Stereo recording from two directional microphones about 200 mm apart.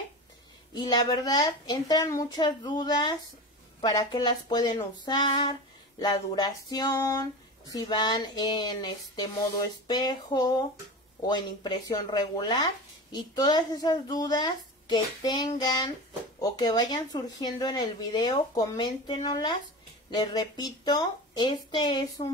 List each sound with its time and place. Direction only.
0.7 s speech: 20° left (ahead or behind)